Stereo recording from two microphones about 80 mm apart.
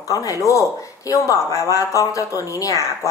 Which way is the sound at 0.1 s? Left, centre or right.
Left.